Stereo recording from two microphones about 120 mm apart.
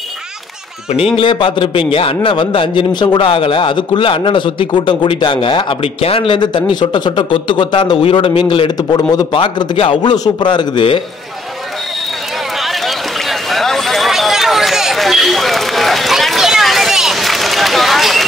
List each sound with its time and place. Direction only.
0.9 s a man's voice: 50° left (ahead or behind)
9.4 s a man's voice: 45° left (ahead or behind)
12.6 s a sound: centre (ahead or behind)